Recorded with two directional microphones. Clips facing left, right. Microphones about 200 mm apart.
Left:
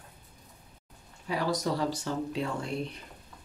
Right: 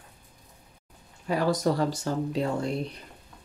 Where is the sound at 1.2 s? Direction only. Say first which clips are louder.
Right 5 dB; 45° right (ahead or behind).